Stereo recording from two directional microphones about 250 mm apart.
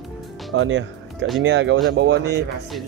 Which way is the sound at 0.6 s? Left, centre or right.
Right.